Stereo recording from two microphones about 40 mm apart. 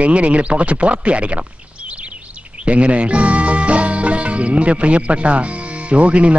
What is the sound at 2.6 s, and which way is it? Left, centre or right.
A man's voice, right.